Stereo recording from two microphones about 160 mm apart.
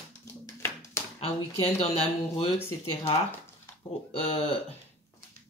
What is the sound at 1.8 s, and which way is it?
Speech, 40° left (ahead or behind).